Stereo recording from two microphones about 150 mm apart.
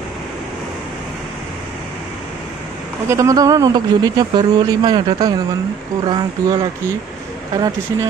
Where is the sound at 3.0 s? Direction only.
20° right (ahead or behind).